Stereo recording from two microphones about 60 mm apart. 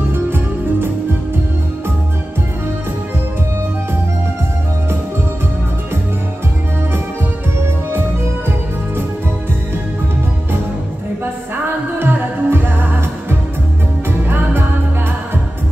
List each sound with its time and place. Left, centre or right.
0.1 s music: right
12.0 s music: right